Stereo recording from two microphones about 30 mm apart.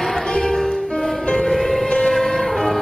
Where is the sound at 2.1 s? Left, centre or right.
Centre.